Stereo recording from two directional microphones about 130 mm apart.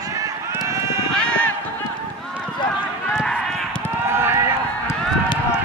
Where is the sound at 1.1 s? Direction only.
10° left (ahead or behind).